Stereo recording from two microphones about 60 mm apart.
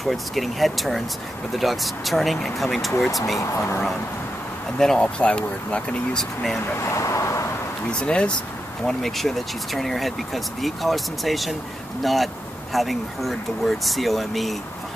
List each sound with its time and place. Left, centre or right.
0.0 s speech: centre
3.5 s speech: left
4.7 s speech: centre
6.1 s speech: centre
6.8 s vehicle: left
8.0 s speech: centre
8.8 s speech: centre